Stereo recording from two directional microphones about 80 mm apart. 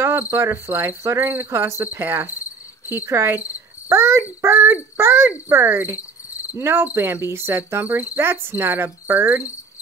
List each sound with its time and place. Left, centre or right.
0.3 s cricket: right
6.5 s speech: right